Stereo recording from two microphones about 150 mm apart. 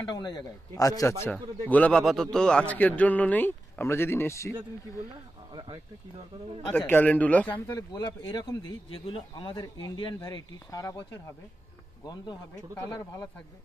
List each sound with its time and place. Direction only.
0.1 s speech: 25° left (ahead or behind)
1.7 s a man's voice: 10° left (ahead or behind)
5.5 s speech: 30° right (ahead or behind)
6.9 s a man's voice: 10° left (ahead or behind)
7.7 s speech: 25° left (ahead or behind)